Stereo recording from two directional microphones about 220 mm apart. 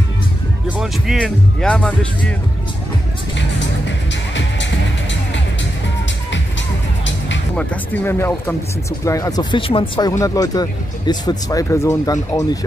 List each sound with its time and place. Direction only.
0.7 s speech: centre (ahead or behind)
4.1 s music: 55° left (ahead or behind)
7.5 s speech: 5° left (ahead or behind)